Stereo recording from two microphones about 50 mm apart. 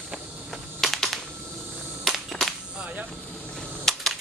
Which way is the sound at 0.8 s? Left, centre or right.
Centre.